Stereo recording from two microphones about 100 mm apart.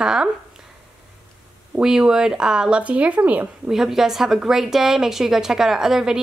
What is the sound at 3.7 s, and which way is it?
Speech, 5° right (ahead or behind).